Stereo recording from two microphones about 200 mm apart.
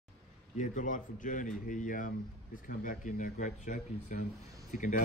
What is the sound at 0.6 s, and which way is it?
Speech, 40° left (ahead or behind).